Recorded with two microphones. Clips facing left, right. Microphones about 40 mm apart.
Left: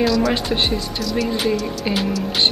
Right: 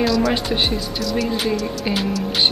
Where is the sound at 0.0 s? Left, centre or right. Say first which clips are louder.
Even; centre.